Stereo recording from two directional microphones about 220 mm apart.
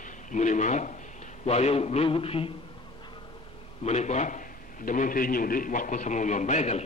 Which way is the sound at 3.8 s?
30° left (ahead or behind).